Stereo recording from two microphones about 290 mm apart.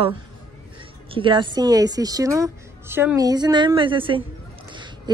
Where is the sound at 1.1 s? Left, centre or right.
Centre.